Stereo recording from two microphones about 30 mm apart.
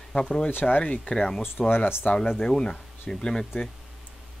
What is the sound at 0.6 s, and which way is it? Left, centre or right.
Speech, left.